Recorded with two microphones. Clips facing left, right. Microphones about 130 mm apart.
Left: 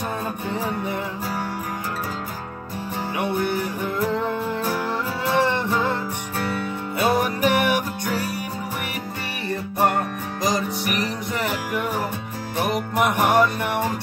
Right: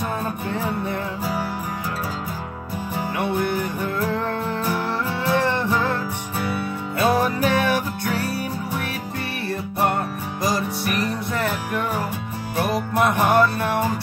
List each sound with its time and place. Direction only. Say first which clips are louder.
5.4 s music: even; 15° left (ahead or behind)
7.0 s music: right 1 dB; 15° left (ahead or behind)
10.4 s music: even; 15° left (ahead or behind)
13.0 s music: right 1 dB; 15° left (ahead or behind)